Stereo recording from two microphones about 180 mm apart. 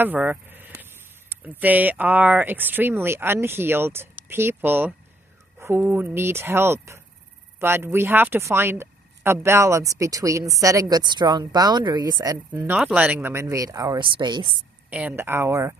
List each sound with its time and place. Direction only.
0.0 s speech: 10° right (ahead or behind)
12.4 s speech: 10° right (ahead or behind); by 14.5 s 25° right (ahead or behind)
14.9 s speech: 10° right (ahead or behind)